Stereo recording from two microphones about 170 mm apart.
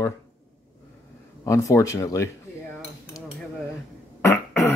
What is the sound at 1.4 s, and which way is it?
Cutlery, 20° left (ahead or behind).